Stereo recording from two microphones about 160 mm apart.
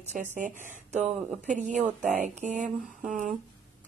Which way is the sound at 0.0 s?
50° right (ahead or behind).